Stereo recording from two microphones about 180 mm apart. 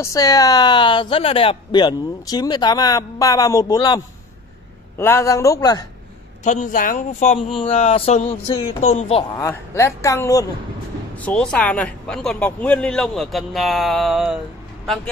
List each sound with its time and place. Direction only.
0.0 s speech: 20° left (ahead or behind)
6.4 s speech: 40° left (ahead or behind)
9.4 s speech: 15° left (ahead or behind)
11.1 s a man's voice: 5° left (ahead or behind)